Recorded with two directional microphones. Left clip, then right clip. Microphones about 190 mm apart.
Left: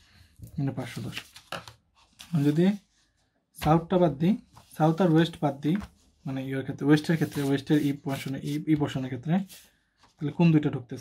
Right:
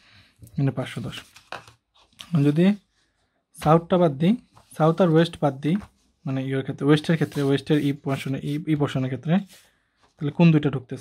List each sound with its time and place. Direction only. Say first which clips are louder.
0.6 s speech: right 6 dB; 45° right (ahead or behind)
2.1 s speech: right 4 dB; 45° right (ahead or behind)